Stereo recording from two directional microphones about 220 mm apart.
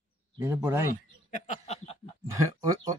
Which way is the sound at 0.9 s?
30° left (ahead or behind).